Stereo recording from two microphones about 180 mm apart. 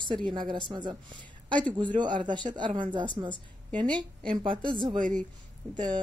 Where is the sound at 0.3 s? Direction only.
25° right (ahead or behind).